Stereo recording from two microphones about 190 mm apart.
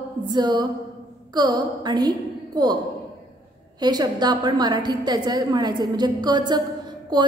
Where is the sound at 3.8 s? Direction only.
20° right (ahead or behind).